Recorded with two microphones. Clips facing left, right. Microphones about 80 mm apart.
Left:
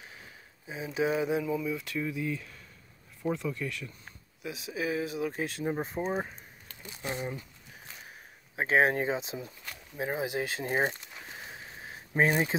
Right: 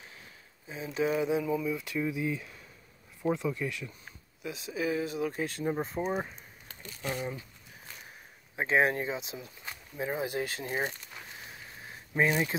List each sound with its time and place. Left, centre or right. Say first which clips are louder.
0.7 s speech: left 1 dB; centre
2.0 s speech: right 1 dB; centre
4.4 s speech: right 1 dB; centre
8.9 s speech: left 4 dB; left
9.9 s speech: left 1 dB; centre
10.6 s a sound: left 4 dB; left
12.3 s speech: left 1 dB; left